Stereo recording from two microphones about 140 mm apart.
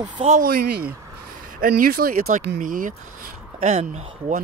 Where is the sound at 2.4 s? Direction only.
70° right (ahead or behind).